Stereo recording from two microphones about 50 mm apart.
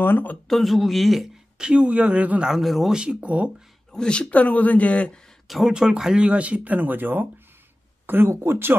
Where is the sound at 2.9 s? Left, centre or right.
Centre.